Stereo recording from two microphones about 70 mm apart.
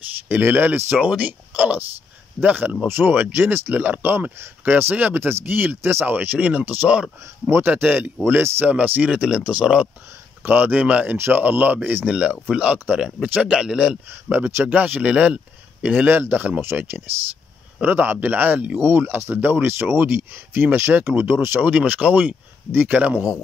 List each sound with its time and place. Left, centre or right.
0.3 s speech: right
8.6 s speech: right
12.1 s speech: centre
14.3 s speech: right
16.1 s speech: right
18.8 s speech: right